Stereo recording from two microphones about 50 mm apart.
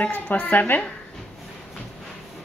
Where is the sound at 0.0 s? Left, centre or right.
Left.